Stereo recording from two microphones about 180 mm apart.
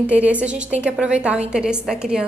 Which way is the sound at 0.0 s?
10° right (ahead or behind).